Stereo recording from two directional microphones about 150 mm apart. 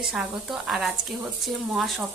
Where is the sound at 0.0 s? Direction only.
5° right (ahead or behind).